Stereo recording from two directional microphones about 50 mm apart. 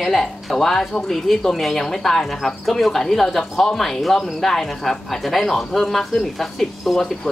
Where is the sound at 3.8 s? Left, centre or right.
Centre.